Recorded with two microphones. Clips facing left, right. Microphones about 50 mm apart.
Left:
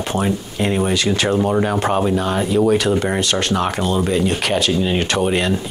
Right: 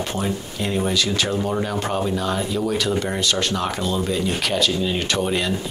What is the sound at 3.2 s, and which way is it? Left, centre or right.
Speech, left.